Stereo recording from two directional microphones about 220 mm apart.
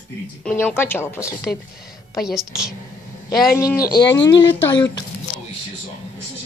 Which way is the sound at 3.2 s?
15° left (ahead or behind).